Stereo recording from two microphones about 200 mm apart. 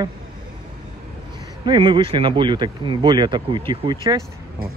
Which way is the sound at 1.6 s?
25° right (ahead or behind).